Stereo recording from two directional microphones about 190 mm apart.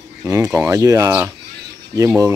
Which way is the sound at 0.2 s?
15° right (ahead or behind).